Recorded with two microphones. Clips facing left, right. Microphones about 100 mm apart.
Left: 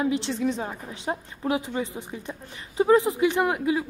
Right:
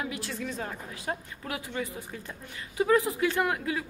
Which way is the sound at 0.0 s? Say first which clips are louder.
Left 10 dB; 25° left (ahead or behind).